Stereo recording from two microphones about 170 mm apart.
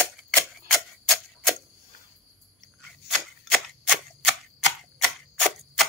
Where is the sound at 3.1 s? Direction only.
Centre (ahead or behind).